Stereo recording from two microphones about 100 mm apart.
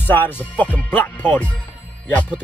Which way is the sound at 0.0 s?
20° left (ahead or behind).